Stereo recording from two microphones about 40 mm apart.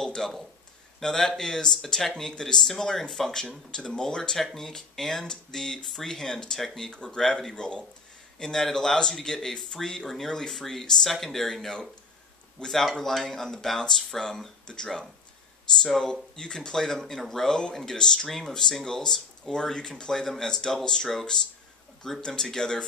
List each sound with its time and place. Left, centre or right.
0.0 s a sound: centre
1.0 s speech: centre
6.9 s speech: left
7.2 s speech: centre
7.5 s speech: left
16.0 s speech: centre